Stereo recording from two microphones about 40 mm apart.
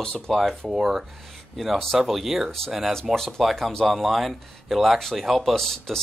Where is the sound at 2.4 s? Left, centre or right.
Centre.